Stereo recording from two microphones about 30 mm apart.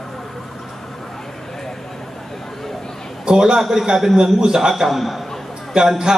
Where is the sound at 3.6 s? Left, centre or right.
Centre.